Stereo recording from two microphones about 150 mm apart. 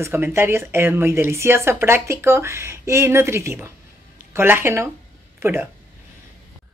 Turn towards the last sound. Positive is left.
turn(degrees=-15)  # may be behind; listen again after turning